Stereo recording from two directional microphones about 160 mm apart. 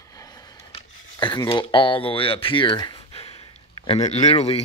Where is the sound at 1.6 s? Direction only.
30° left (ahead or behind).